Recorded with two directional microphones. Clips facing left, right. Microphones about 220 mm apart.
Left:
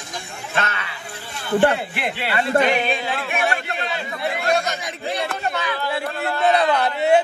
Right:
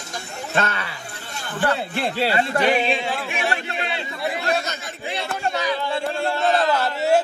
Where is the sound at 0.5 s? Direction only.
30° right (ahead or behind).